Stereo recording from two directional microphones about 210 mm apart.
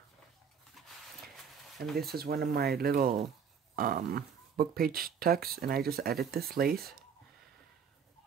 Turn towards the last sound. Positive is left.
turn(degrees=-45)  # may be behind; listen again after turning